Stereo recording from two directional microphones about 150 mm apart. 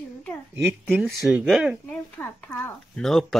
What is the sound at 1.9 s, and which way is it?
Speech, 10° left (ahead or behind).